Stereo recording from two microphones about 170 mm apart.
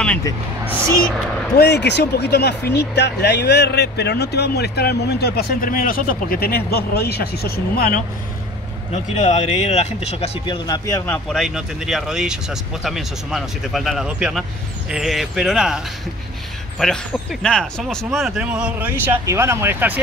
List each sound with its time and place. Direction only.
1.6 s speech: 80° left; by 8.0 s 60° left (ahead or behind)
8.9 s speech: 40° left (ahead or behind)
11.2 s speech: centre (ahead or behind)
16.8 s speech: centre (ahead or behind)